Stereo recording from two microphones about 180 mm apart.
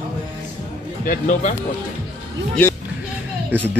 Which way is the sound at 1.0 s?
45° left (ahead or behind).